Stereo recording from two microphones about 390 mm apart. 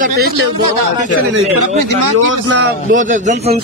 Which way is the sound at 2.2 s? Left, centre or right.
Right.